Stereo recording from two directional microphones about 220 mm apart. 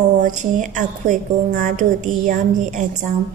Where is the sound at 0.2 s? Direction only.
35° right (ahead or behind).